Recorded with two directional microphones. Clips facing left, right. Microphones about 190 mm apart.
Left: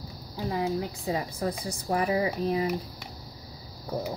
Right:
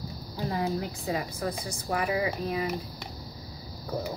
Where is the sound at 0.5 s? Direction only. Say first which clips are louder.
Left 2 dB; 20° left (ahead or behind).